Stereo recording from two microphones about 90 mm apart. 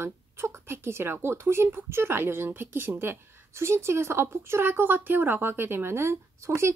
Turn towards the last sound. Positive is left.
turn(degrees=-30)  # may be behind; listen again after turning